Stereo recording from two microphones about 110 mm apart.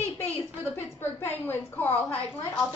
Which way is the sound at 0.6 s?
20° left (ahead or behind).